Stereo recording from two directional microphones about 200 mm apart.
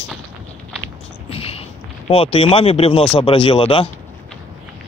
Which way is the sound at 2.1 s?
30° left (ahead or behind).